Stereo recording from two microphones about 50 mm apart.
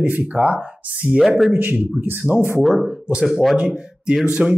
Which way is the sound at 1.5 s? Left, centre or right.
Right.